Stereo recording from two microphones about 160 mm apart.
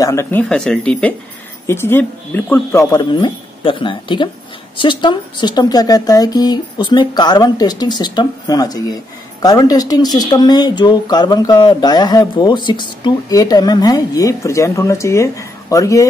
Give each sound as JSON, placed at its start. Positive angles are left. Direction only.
{"t": 0.0, "sound": "speech", "side_deg": 15}